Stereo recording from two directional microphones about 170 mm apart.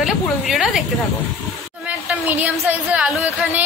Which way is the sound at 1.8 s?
10° right (ahead or behind).